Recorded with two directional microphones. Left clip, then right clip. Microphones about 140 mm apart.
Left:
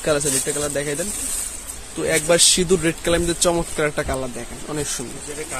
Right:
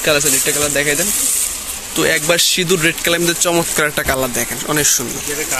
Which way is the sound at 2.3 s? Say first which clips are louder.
Right 2 dB; 25° left (ahead or behind).